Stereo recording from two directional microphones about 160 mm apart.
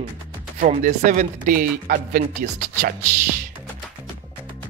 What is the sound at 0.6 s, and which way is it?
Speech, 55° right (ahead or behind).